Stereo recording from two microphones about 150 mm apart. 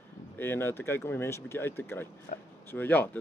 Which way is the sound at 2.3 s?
60° left (ahead or behind).